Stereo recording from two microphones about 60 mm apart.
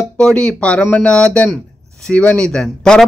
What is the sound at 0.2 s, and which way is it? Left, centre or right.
Speech, centre.